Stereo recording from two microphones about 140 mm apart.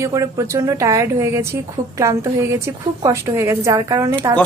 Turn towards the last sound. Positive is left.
turn(degrees=-25)  # may be behind; listen again after turning